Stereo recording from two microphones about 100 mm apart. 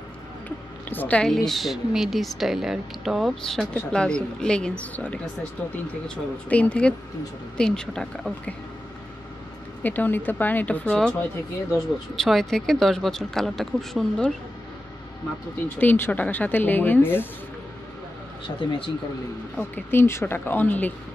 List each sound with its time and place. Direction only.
0.8 s a woman's voice: 15° left (ahead or behind)
1.3 s speech: centre (ahead or behind)
9.8 s speech: 20° left (ahead or behind)
12.2 s speech: 5° left (ahead or behind)
15.8 s a woman's voice: 20° left (ahead or behind)
18.6 s speech: 55° left (ahead or behind)
19.5 s a woman's voice: 20° left (ahead or behind)